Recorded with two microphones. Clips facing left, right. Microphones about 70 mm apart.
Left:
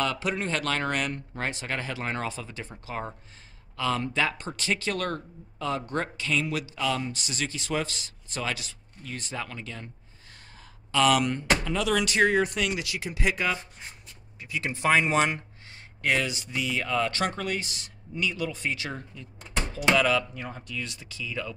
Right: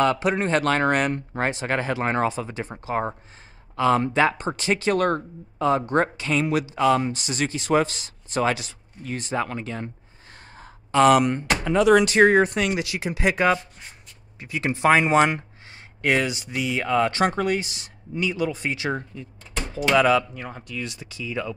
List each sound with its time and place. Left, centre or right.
0.0 s a man's voice: right
10.6 s a sound: right
11.6 s speech: right
13.2 s speech: right; by 21.5 s centre